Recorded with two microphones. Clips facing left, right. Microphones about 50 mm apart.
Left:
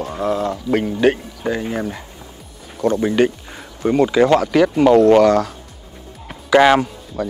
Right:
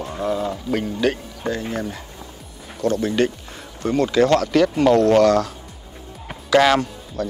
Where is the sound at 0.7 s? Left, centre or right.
Left.